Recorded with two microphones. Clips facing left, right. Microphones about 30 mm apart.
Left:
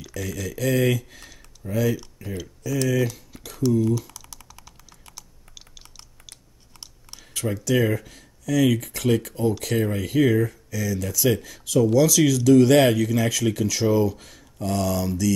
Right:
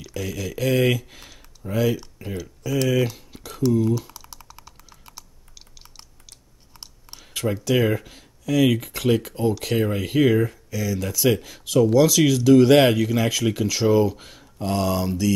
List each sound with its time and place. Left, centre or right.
0.0 s speech: centre
3.4 s typing: centre
6.7 s speech: centre